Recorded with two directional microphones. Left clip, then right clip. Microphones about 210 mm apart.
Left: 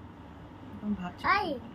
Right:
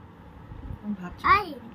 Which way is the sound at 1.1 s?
10° left (ahead or behind).